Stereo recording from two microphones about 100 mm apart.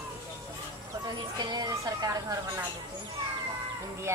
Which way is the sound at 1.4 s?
40° right (ahead or behind).